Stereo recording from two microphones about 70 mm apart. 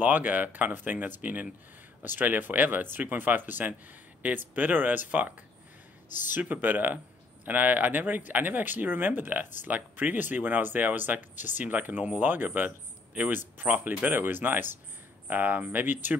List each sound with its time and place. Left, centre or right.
0.0 s speech: right
6.4 s speech: right